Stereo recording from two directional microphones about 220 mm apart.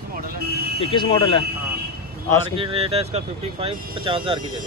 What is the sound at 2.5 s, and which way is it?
Speech, 25° right (ahead or behind).